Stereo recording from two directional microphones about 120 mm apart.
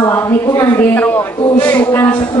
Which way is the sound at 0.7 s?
15° left (ahead or behind).